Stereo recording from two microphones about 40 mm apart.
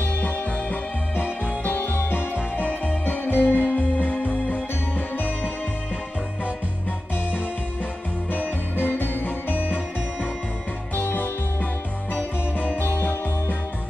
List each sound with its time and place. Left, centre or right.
0.0 s music: left
2.5 s music: left
3.3 s music: left
3.7 s music: left
8.3 s music: left
11.0 s music: left
12.5 s music: left